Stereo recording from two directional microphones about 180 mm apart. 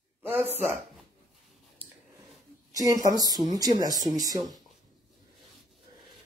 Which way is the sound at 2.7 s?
20° right (ahead or behind).